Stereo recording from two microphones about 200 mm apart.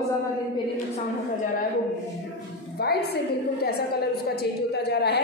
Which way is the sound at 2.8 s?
50° left (ahead or behind).